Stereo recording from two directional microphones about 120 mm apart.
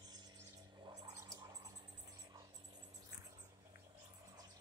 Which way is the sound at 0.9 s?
25° right (ahead or behind).